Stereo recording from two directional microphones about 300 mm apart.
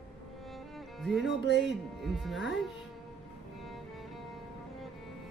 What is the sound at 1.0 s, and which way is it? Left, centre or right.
Speech, centre.